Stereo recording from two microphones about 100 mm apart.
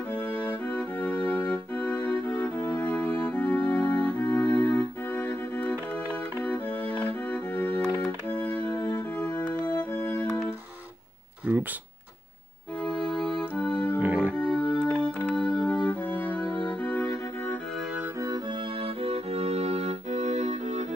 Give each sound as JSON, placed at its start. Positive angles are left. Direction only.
{"t": 0.7, "sound": "music", "side_deg": 10}
{"t": 1.5, "sound": "organ", "side_deg": 10}
{"t": 6.4, "sound": "music", "side_deg": 15}
{"t": 11.5, "sound": "a sound", "side_deg": -15}
{"t": 12.8, "sound": "music", "side_deg": 0}
{"t": 13.9, "sound": "music", "side_deg": -20}
{"t": 14.3, "sound": "organ", "side_deg": 10}
{"t": 16.2, "sound": "music", "side_deg": 10}
{"t": 18.8, "sound": "music", "side_deg": -90}